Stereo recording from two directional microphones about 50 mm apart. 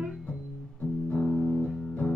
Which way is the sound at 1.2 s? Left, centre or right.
Centre.